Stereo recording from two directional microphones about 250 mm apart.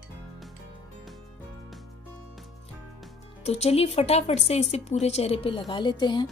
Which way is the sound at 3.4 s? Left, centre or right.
Left.